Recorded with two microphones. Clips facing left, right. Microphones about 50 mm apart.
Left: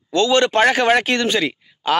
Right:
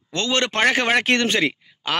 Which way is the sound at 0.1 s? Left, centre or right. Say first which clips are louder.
Left 7 dB; right.